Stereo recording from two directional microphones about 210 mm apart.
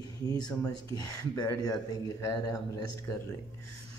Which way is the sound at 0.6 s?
15° left (ahead or behind).